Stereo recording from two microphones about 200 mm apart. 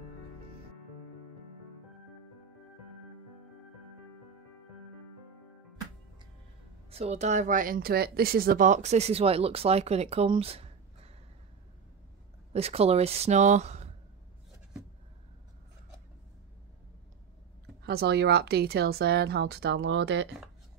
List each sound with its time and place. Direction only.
6.9 s speech: 30° right (ahead or behind)
12.5 s speech: 30° right (ahead or behind)
17.8 s speech: 55° right (ahead or behind)